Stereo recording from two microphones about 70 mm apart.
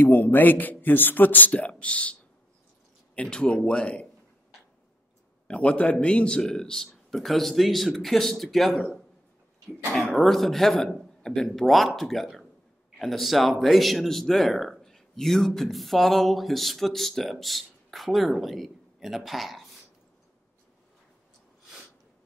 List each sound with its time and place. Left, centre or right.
0.0 s a man's voice: left
3.2 s a man's voice: centre
5.5 s speech: centre